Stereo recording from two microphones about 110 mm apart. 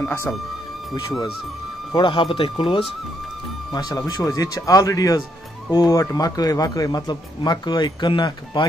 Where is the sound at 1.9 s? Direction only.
45° left (ahead or behind).